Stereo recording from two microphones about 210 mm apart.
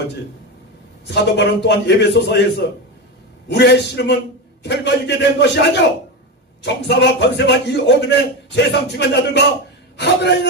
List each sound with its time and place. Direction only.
1.0 s a man's voice: 55° left (ahead or behind)